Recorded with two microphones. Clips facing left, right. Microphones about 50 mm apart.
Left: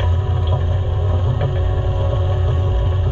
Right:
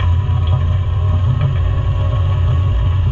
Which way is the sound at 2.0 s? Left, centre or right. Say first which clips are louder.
Left 1 dB; right.